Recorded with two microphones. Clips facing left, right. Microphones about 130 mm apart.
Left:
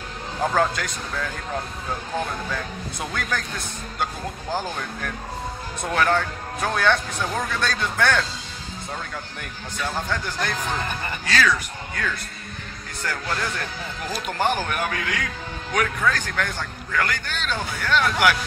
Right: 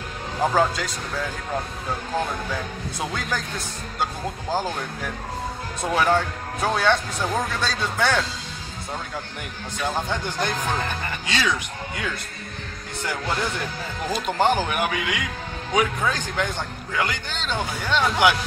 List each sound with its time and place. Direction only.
0.4 s speech: 5° right (ahead or behind)
2.5 s a man's voice: 5° right (ahead or behind)
9.8 s a man's voice: 15° right (ahead or behind)